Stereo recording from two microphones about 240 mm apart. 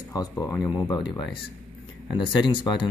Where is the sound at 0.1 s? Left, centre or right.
Centre.